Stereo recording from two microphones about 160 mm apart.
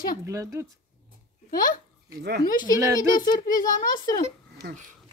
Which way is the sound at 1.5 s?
60° left (ahead or behind).